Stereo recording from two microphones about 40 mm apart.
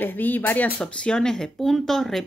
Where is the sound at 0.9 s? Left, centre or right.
Left; by 2.2 s centre.